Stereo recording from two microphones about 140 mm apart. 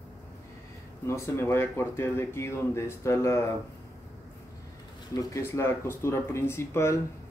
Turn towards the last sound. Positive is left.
turn(degrees=20)  # may be behind; listen again after turning